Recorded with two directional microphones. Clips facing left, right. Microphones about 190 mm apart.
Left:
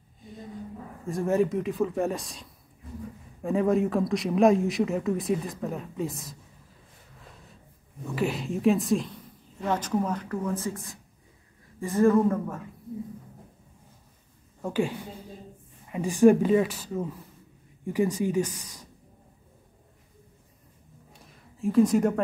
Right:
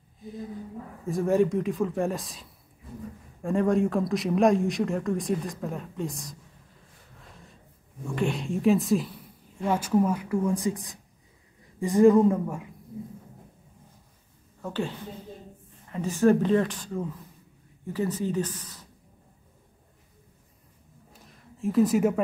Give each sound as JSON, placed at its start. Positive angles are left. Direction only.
{"t": 1.0, "sound": "speech", "side_deg": 0}
{"t": 3.4, "sound": "speech", "side_deg": 5}
{"t": 7.2, "sound": "snort", "side_deg": 0}
{"t": 8.1, "sound": "a woman's voice", "side_deg": 5}
{"t": 14.6, "sound": "a woman's voice", "side_deg": 10}
{"t": 21.1, "sound": "a sound", "side_deg": 0}